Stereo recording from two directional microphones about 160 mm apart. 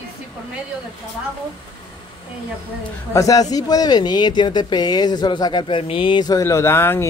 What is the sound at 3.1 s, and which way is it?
Speech, 20° left (ahead or behind).